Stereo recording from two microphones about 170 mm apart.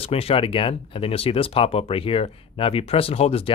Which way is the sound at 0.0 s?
35° left (ahead or behind).